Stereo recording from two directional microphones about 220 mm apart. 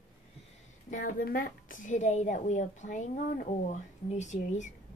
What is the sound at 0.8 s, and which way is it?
Speech, 35° left (ahead or behind).